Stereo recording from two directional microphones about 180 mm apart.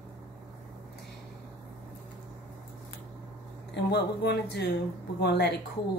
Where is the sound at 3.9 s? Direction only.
65° left (ahead or behind).